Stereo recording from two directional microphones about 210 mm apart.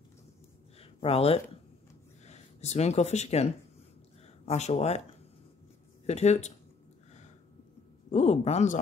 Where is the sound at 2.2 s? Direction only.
30° left (ahead or behind).